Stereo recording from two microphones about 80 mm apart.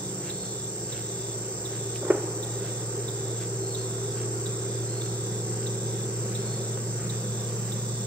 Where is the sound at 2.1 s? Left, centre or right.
Right.